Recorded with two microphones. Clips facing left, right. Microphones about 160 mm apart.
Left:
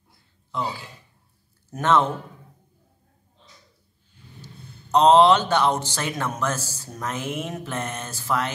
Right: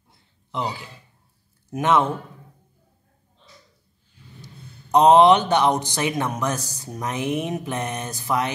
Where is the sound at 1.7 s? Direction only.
10° right (ahead or behind).